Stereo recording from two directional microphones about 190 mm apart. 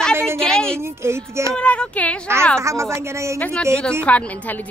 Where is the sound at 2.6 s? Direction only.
15° right (ahead or behind).